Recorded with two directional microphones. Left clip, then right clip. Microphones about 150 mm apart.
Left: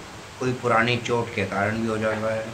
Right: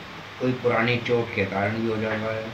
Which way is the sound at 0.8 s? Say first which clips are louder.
Right 1 dB; 25° left (ahead or behind).